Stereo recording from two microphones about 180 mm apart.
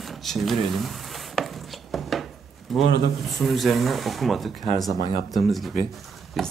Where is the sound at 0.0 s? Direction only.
Centre (ahead or behind).